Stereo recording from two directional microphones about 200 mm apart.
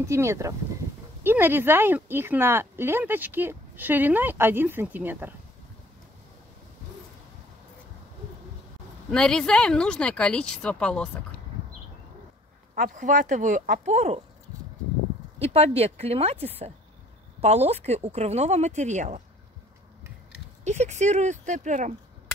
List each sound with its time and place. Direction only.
0.0 s speech: 15° right (ahead or behind)
9.1 s speech: 5° left (ahead or behind)
12.7 s speech: 40° right (ahead or behind)
15.5 s speech: 30° right (ahead or behind)
20.6 s speech: 35° right (ahead or behind)